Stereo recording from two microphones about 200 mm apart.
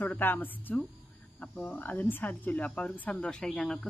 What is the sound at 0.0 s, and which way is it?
Speech, 10° left (ahead or behind).